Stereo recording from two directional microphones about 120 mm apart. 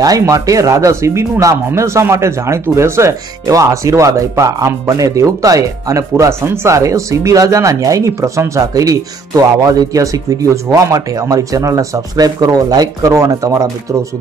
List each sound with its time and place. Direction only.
0.0 s speech: 30° right (ahead or behind)